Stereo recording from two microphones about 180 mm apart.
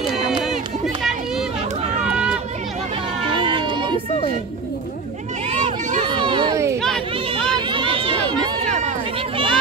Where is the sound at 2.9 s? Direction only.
30° right (ahead or behind).